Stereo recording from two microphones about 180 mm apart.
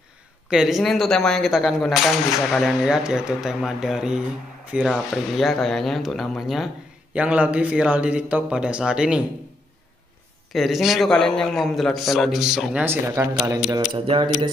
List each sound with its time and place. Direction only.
0.5 s speech: centre (ahead or behind)
10.5 s speech: centre (ahead or behind); by 13.4 s 15° right (ahead or behind)
13.9 s speech: 30° right (ahead or behind)